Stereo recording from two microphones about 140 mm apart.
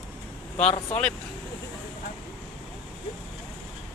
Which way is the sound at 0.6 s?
45° left (ahead or behind).